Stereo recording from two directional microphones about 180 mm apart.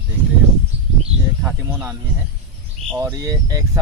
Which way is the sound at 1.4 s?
10° right (ahead or behind).